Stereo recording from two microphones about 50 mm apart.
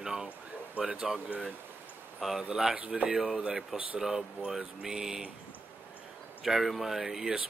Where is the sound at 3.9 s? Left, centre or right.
Centre.